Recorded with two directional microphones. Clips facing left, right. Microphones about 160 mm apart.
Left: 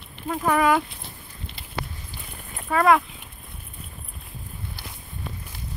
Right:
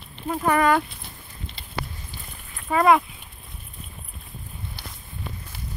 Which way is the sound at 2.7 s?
10° right (ahead or behind).